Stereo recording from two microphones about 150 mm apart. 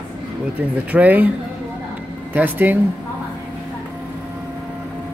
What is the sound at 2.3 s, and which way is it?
Speech, 10° right (ahead or behind).